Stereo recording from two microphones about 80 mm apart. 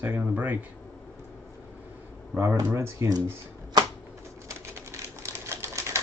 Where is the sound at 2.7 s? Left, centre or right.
Right.